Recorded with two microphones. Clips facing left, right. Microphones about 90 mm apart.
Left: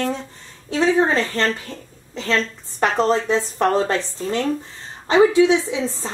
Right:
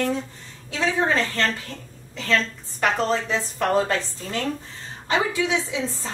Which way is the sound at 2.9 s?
30° left (ahead or behind).